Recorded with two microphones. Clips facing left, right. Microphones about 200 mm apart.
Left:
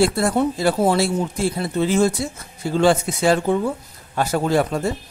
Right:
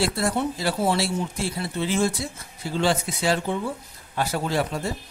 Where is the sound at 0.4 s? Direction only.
45° left (ahead or behind).